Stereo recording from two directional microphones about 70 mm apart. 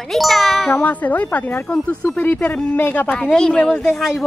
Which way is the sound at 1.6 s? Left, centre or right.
Centre.